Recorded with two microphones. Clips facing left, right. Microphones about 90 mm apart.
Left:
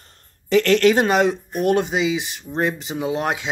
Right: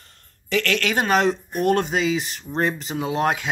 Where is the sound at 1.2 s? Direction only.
10° left (ahead or behind).